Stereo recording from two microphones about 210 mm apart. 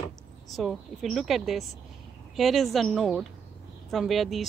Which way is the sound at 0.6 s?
Centre (ahead or behind).